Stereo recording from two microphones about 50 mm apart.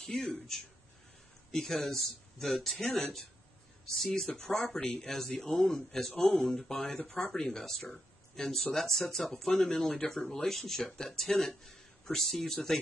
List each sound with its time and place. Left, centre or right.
0.1 s speech: centre
6.1 s speech: centre
6.4 s speech: centre